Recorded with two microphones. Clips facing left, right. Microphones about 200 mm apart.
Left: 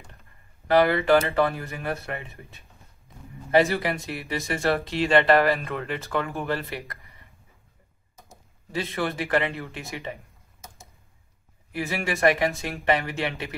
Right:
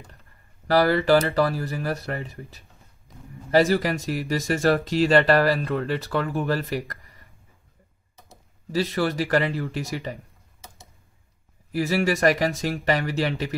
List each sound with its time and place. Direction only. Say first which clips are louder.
0.7 s speech: right 1 dB; 35° right (ahead or behind)
8.3 s speech: right 6 dB; 35° right (ahead or behind)
11.7 s speech: right 6 dB; 35° right (ahead or behind)